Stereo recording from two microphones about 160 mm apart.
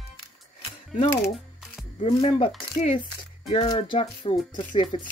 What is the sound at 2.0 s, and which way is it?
Speech, 35° left (ahead or behind).